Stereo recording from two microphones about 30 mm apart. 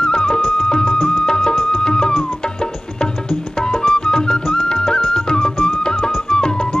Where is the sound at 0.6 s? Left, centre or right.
Left.